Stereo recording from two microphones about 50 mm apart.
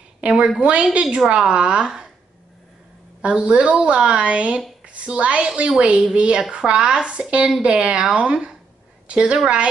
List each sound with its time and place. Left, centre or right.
0.2 s a woman's voice: right
3.2 s a woman's voice: right